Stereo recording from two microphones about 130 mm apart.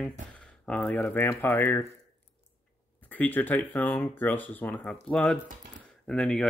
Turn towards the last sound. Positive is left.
turn(degrees=5)  # may be behind; listen again after turning